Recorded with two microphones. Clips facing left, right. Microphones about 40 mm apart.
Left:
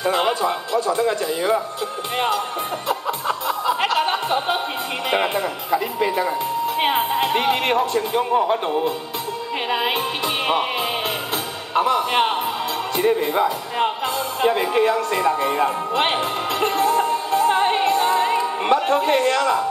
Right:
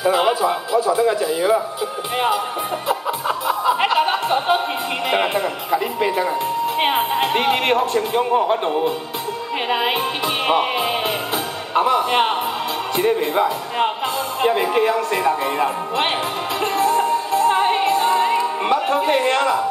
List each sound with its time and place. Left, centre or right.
0.0 s speech: centre
2.9 s music: centre
5.1 s speech: centre
17.4 s music: centre
18.9 s speech: centre
19.2 s speech: right